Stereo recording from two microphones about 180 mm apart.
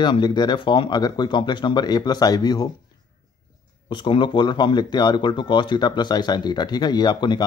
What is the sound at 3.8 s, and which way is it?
Speech, 25° left (ahead or behind).